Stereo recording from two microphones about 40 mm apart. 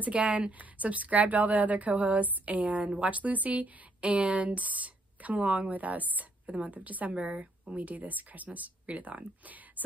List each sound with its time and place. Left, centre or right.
0.0 s a woman's voice: right